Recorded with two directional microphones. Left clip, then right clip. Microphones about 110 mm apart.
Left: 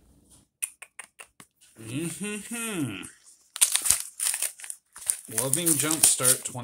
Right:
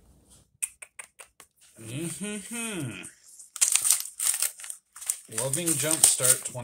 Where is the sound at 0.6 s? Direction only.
30° left (ahead or behind).